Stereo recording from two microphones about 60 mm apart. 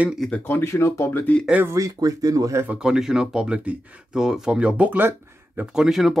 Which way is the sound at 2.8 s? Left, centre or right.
Centre.